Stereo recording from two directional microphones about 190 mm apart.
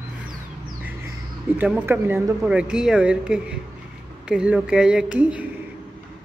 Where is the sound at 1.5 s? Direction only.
10° right (ahead or behind).